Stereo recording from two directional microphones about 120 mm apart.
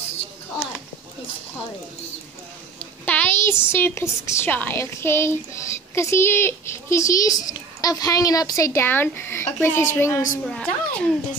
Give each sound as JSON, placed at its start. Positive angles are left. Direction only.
{"t": 3.1, "sound": "a sound", "side_deg": 15}
{"t": 3.7, "sound": "a woman's voice", "side_deg": 20}
{"t": 10.4, "sound": "a woman's voice", "side_deg": 10}